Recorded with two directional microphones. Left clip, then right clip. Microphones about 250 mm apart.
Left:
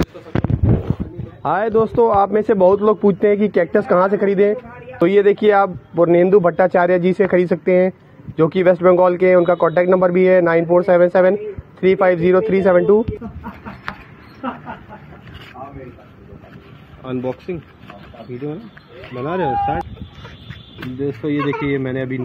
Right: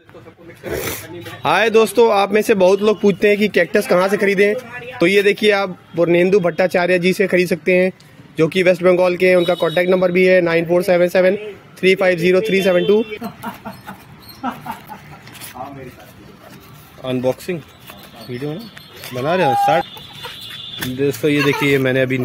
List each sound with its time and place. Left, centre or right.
1.4 s speech: centre
17.0 s speech: right
19.2 s speech: right
21.0 s speech: right